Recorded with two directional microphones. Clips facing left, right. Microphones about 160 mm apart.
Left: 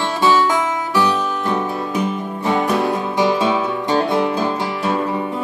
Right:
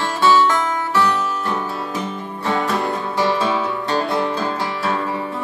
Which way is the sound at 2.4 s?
15° left (ahead or behind).